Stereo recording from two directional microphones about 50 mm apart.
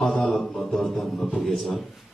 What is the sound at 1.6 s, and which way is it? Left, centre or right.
Speech, centre.